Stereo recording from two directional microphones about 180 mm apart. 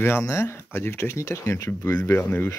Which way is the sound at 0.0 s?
15° left (ahead or behind).